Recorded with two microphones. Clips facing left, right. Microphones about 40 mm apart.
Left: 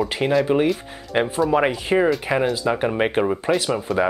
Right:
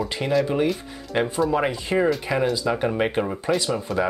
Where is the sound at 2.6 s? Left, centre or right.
Centre.